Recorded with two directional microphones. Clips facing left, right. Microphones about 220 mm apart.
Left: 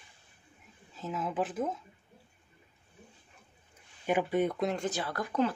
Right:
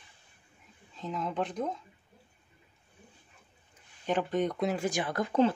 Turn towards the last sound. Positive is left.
turn(degrees=-25)  # may be behind; listen again after turning